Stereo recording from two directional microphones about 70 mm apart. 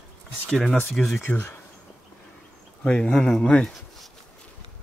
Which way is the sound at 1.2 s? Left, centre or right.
Left.